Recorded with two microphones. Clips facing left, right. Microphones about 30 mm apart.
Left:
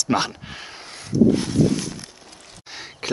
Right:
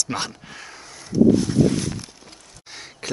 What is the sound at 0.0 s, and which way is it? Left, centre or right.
Speech, centre.